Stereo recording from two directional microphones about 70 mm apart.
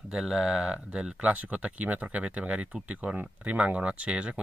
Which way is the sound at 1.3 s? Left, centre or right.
Right.